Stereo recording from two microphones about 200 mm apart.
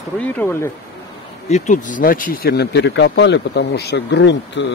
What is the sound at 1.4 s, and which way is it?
Speech, 35° left (ahead or behind).